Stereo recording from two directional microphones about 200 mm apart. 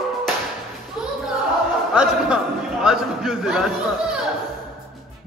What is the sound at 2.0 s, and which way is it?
A man's voice, 5° right (ahead or behind).